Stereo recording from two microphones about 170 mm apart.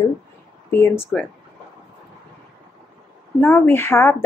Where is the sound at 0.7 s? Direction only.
15° left (ahead or behind).